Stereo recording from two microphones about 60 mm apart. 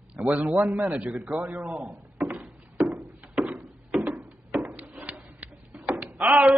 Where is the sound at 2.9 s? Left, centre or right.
Right.